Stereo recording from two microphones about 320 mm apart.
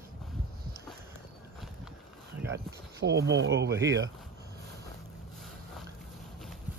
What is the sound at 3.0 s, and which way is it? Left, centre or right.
Speech, right.